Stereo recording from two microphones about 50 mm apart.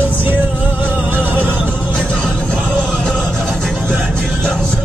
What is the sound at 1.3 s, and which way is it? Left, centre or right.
Neigh, right.